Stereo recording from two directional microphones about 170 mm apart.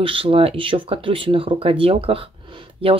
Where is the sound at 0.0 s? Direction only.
30° right (ahead or behind).